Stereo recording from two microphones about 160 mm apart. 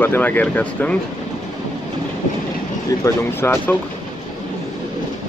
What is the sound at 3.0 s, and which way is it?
Speech, 15° left (ahead or behind).